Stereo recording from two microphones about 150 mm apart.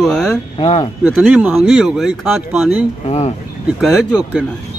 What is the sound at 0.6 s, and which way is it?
Speech, 40° left (ahead or behind).